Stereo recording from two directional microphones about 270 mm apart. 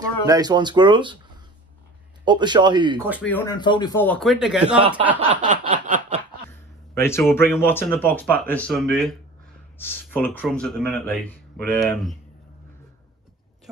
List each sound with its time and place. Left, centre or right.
0.0 s speech: centre
2.2 s speech: centre
3.2 s speech: centre
4.7 s a sound: centre
7.0 s speech: centre